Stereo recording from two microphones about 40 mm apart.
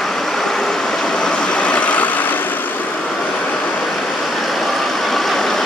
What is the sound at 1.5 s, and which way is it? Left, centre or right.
Vehicle, left.